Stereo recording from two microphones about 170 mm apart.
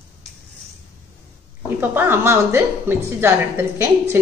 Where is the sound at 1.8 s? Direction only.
15° right (ahead or behind).